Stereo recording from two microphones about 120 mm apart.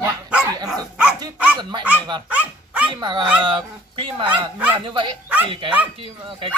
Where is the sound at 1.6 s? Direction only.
40° right (ahead or behind).